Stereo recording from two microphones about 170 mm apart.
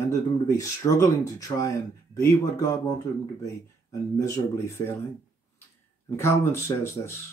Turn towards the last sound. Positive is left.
turn(degrees=15)  # may be behind; listen again after turning